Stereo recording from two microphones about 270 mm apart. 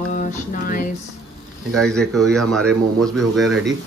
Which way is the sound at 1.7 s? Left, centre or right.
Centre.